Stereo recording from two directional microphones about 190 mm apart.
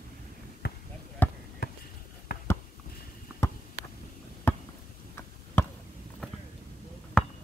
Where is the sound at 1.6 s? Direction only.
55° left (ahead or behind).